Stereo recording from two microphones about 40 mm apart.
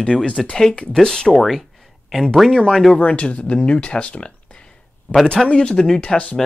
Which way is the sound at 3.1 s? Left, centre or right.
Left.